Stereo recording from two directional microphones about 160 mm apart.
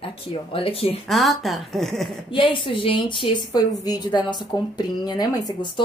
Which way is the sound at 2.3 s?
30° left (ahead or behind).